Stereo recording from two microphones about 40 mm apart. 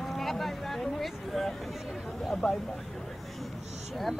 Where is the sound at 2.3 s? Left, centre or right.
Centre.